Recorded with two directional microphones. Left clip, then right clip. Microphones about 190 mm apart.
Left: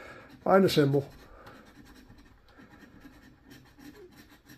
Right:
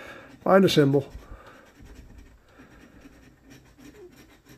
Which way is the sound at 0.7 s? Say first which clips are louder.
Right 5 dB; 35° right (ahead or behind).